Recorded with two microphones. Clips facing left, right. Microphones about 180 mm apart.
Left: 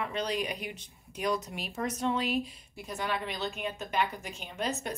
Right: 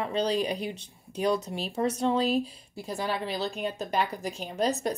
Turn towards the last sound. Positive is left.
turn(degrees=-35)  # may be behind; listen again after turning